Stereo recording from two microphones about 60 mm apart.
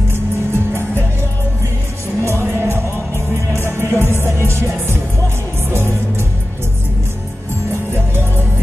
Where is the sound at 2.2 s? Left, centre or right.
Right.